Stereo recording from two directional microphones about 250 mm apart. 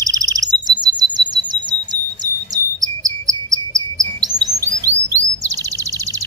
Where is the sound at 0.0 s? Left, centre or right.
Centre.